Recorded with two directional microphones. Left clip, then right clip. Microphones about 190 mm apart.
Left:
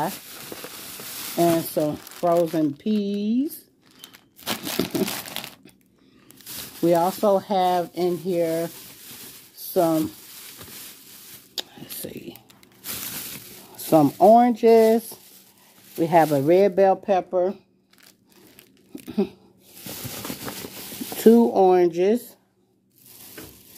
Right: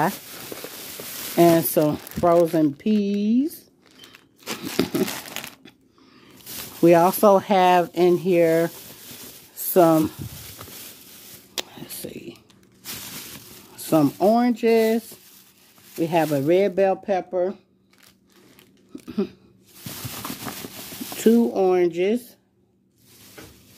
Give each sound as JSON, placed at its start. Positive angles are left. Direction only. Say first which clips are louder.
{"t": 1.3, "sound": "speech", "louder": "right 4 dB", "side_deg": -45}
{"t": 4.8, "sound": "crumpling", "louder": "right 6 dB", "side_deg": -30}
{"t": 5.4, "sound": "a sound", "louder": "even", "side_deg": -5}
{"t": 6.8, "sound": "speech", "louder": "right 5 dB", "side_deg": -40}
{"t": 9.8, "sound": "speech", "louder": "right 4 dB", "side_deg": -35}
{"t": 11.5, "sound": "whispering", "louder": "right 1 dB", "side_deg": -25}
{"t": 12.1, "sound": "a sound", "louder": "even", "side_deg": 0}
{"t": 13.7, "sound": "speech", "louder": "left 3 dB", "side_deg": 0}
{"t": 19.0, "sound": "a sound", "louder": "left 2 dB", "side_deg": 0}
{"t": 21.2, "sound": "speech", "louder": "left 3 dB", "side_deg": 5}